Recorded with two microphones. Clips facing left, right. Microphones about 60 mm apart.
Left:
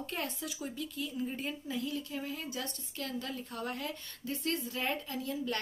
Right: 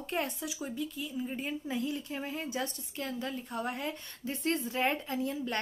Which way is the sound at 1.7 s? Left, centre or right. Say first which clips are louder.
Right 1 dB; right.